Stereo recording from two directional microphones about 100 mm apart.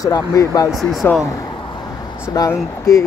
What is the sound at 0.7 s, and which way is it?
Speech, centre (ahead or behind).